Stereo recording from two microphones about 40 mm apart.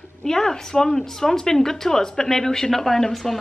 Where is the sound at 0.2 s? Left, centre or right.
Centre.